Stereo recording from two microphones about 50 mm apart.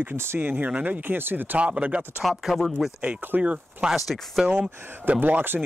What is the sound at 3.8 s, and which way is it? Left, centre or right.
Speech, centre.